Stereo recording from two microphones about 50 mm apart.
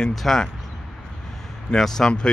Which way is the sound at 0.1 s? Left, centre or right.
Centre.